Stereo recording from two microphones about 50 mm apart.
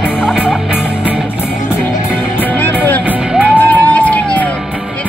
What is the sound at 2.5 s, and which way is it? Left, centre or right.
Music, left.